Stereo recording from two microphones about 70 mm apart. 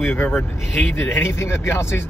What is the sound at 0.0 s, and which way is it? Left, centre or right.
Speech, left.